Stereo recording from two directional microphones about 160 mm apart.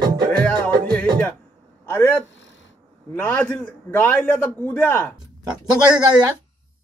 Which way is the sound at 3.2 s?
10° left (ahead or behind).